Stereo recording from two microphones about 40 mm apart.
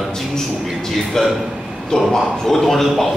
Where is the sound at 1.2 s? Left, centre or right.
Centre.